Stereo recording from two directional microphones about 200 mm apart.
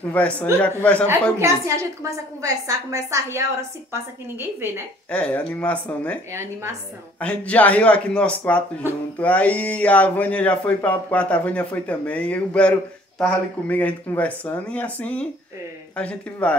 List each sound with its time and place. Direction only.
0.0 s speech: 5° left (ahead or behind)
1.4 s a woman's voice: 15° right (ahead or behind)
5.1 s speech: 5° left (ahead or behind)
7.2 s speech: 5° left (ahead or behind)